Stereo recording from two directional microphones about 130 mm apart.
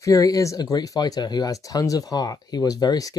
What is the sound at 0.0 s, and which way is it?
Speech, 25° left (ahead or behind).